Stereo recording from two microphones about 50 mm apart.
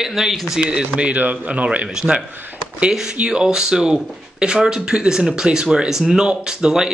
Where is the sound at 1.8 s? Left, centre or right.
Centre.